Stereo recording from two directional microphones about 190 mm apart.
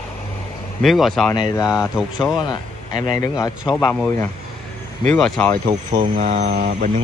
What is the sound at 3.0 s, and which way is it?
Speech, 20° left (ahead or behind).